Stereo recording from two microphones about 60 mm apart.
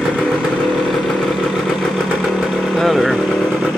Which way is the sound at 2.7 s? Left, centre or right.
Centre.